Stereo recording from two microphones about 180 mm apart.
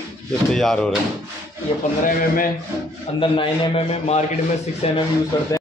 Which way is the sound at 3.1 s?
30° left (ahead or behind).